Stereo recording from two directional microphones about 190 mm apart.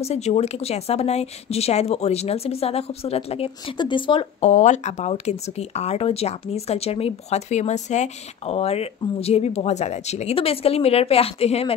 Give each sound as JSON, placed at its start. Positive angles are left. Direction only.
{"t": 0.0, "sound": "speech", "side_deg": 35}